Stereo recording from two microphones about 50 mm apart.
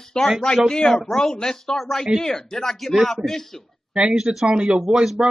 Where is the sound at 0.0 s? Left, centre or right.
Centre.